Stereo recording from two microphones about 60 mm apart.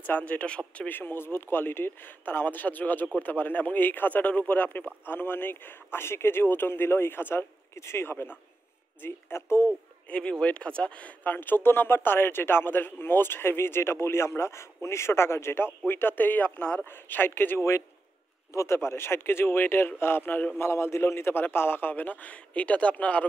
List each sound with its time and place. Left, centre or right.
0.0 s speech: left
0.8 s speech: left
10.0 s speech: centre
16.8 s speech: left
18.5 s speech: left
20.5 s speech: left